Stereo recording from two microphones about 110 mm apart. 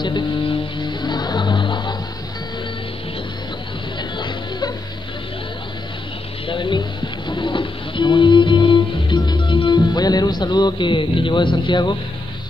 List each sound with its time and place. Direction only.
0.0 s music: 45° left (ahead or behind)
4.2 s music: 40° left (ahead or behind)
6.5 s a sound: 45° left (ahead or behind)
7.2 s music: 45° left (ahead or behind)